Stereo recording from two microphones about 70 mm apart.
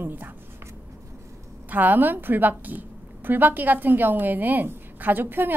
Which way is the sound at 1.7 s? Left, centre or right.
Right.